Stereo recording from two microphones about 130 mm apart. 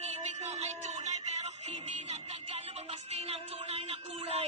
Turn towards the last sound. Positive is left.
turn(degrees=-50)  # may be behind; listen again after turning